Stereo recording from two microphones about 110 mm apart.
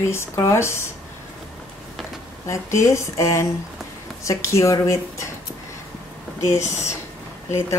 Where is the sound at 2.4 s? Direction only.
30° left (ahead or behind).